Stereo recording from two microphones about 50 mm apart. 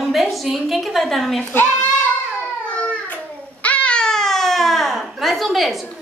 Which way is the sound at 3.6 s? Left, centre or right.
Left.